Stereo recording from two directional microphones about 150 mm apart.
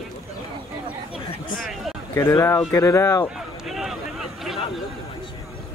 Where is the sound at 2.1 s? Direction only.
25° left (ahead or behind).